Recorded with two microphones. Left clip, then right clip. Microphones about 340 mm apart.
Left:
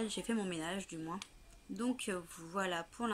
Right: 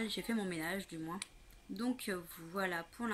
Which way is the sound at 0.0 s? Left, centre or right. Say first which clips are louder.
Even; centre.